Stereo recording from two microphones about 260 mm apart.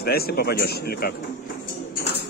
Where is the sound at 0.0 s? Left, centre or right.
Left.